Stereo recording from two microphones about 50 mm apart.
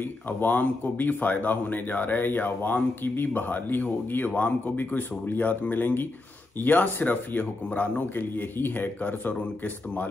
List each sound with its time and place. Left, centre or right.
0.0 s speech: left
4.3 s speech: left
4.7 s speech: left